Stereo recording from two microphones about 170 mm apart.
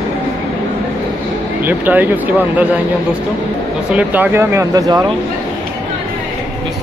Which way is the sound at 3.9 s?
10° right (ahead or behind).